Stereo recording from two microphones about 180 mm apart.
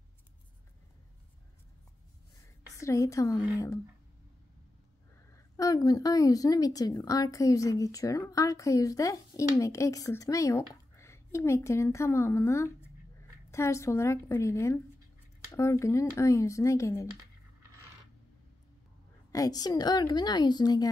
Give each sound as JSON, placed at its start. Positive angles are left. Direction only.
{"t": 2.8, "sound": "speech", "side_deg": 15}
{"t": 5.3, "sound": "a woman's voice", "side_deg": 20}
{"t": 19.3, "sound": "a woman's voice", "side_deg": 20}